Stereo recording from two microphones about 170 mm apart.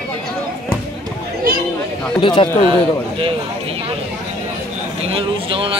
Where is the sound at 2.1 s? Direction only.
30° left (ahead or behind).